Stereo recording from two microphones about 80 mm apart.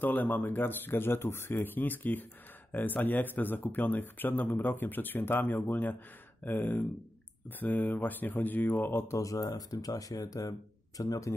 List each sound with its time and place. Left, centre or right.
0.0 s speech: left
8.7 s mantra: left
9.6 s speech: left